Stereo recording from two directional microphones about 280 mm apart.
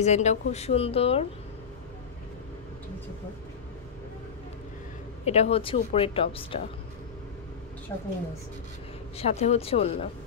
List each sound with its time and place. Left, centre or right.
0.0 s speech: left
5.2 s speech: left
7.9 s a woman's voice: centre
9.2 s speech: left